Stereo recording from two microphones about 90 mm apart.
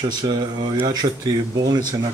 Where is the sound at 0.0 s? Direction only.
50° right (ahead or behind).